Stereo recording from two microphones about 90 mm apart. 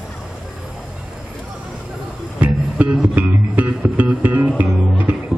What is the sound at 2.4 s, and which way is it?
Music, 15° right (ahead or behind).